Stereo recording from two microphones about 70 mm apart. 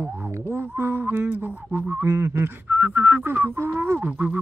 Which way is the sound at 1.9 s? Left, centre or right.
Right.